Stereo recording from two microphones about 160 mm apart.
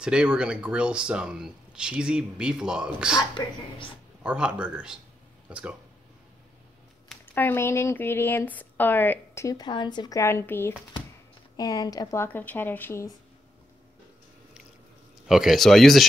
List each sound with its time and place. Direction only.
0.0 s speech: 5° right (ahead or behind)
3.3 s speech: 30° left (ahead or behind)
4.2 s speech: 5° right (ahead or behind)
7.3 s speech: 15° left (ahead or behind)
15.2 s speech: centre (ahead or behind)